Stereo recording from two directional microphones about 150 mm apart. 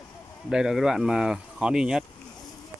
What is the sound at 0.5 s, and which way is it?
Speech, 5° right (ahead or behind).